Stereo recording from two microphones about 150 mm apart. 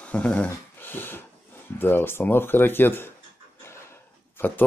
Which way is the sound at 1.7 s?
15° left (ahead or behind).